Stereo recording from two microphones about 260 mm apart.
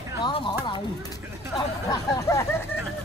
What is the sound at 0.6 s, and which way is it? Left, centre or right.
Speech, centre.